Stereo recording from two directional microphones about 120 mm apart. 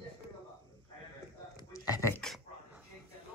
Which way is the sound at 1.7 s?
25° left (ahead or behind).